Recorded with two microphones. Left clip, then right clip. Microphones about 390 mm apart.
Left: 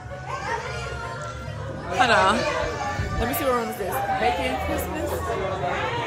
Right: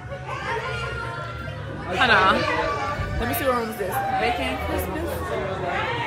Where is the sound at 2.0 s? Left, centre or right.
Centre.